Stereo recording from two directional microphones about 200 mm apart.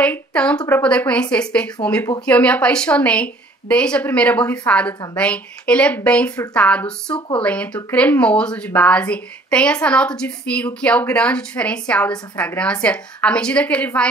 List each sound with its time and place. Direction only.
0.0 s a woman's voice: 5° left (ahead or behind)
7.2 s speech: 20° left (ahead or behind)
7.4 s speech: 5° left (ahead or behind)